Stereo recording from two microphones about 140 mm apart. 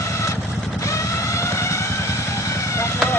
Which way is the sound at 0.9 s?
20° left (ahead or behind).